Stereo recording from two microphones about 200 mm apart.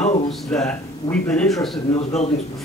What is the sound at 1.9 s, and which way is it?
Speech, 35° left (ahead or behind).